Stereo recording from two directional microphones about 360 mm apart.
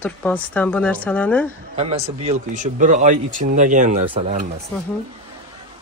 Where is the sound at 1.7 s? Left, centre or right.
Centre.